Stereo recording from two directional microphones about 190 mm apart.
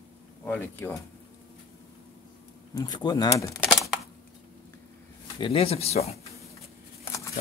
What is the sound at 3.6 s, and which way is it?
Typing, centre (ahead or behind).